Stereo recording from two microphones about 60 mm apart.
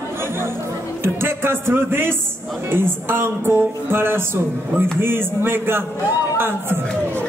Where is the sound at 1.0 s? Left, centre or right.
Right.